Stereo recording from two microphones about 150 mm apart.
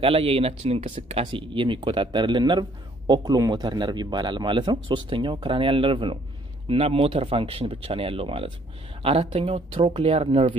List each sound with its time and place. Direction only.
0.0 s a man's voice: 40° right (ahead or behind)